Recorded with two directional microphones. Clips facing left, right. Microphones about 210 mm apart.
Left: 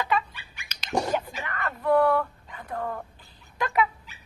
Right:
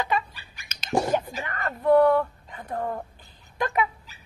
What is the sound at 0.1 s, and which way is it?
Bird, 35° right (ahead or behind).